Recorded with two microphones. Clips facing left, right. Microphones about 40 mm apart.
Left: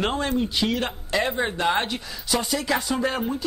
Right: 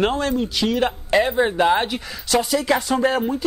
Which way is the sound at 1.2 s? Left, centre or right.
Centre.